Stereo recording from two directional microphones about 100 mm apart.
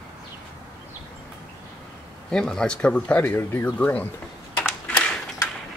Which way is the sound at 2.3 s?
5° left (ahead or behind).